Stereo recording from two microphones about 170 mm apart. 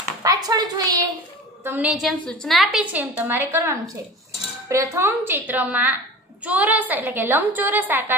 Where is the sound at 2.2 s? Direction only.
5° left (ahead or behind).